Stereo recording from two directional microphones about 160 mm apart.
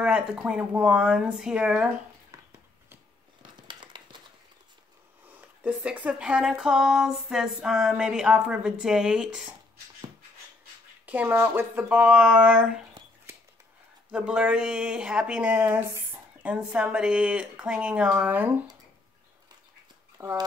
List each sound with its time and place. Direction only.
0.0 s speech: 5° right (ahead or behind)
3.6 s a sound: 30° right (ahead or behind)
5.3 s speech: 10° right (ahead or behind)
11.1 s speech: 10° right (ahead or behind)
14.1 s speech: 5° right (ahead or behind)
20.2 s speech: 15° right (ahead or behind)